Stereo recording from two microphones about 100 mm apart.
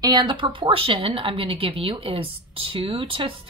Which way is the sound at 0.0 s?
50° right (ahead or behind).